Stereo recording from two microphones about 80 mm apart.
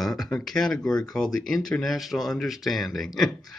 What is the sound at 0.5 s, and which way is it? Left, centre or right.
Speech, centre.